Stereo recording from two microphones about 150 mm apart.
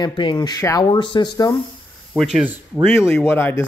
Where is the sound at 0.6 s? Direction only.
20° left (ahead or behind).